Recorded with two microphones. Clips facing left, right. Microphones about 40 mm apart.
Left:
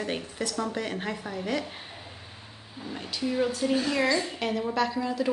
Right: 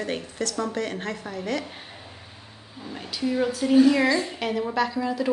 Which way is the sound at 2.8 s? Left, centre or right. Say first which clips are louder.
Right 3 dB; centre.